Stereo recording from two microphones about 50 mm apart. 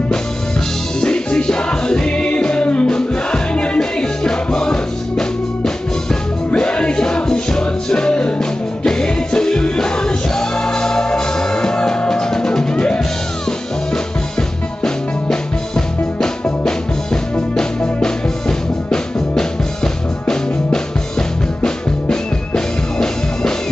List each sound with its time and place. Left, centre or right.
1.0 s music: centre
14.8 s music: centre
17.6 s music: centre